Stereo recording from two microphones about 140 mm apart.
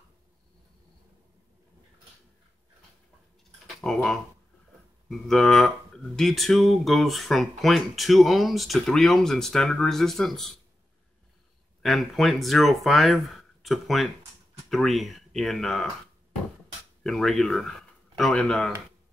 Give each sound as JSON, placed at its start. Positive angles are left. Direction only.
{"t": 3.6, "sound": "a sound", "side_deg": 5}
{"t": 5.0, "sound": "speech", "side_deg": 0}
{"t": 11.8, "sound": "speech", "side_deg": 0}
{"t": 17.0, "sound": "speech", "side_deg": 5}